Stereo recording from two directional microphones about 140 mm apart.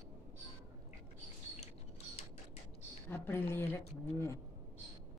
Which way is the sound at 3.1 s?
15° left (ahead or behind).